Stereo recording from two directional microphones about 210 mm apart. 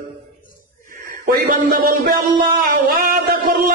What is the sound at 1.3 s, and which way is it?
A man's voice, 40° right (ahead or behind).